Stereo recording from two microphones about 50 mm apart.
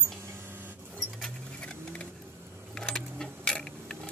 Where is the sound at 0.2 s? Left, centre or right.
Right.